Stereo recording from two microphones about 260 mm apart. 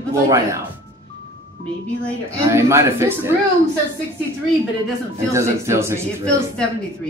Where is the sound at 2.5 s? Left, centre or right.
Centre.